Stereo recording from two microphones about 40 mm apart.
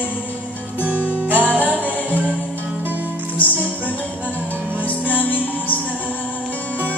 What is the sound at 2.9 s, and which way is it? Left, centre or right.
Music, left.